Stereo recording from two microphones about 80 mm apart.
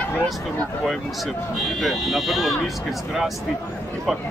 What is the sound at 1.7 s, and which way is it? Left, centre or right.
Speech, centre.